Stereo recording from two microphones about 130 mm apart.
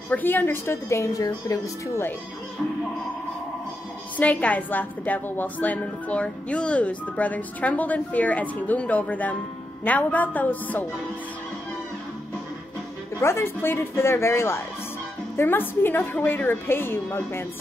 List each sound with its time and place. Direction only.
0.1 s a woman's voice: 15° left (ahead or behind)
4.2 s a woman's voice: 10° left (ahead or behind)
13.2 s a woman's voice: 20° left (ahead or behind)